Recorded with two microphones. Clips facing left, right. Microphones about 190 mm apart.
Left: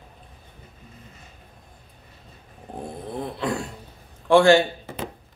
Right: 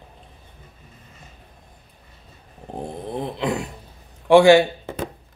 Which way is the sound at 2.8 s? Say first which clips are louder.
Right 3 dB; 20° right (ahead or behind).